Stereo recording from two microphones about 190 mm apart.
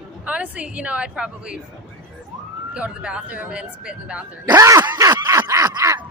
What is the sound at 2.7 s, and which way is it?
Speech, 5° right (ahead or behind).